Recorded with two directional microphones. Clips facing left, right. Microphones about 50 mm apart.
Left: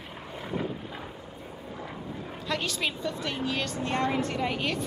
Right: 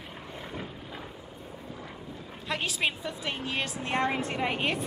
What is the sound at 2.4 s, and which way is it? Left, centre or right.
A woman's voice, right.